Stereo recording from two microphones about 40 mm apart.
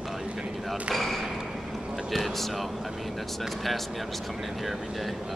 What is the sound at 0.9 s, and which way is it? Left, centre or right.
Speech, centre.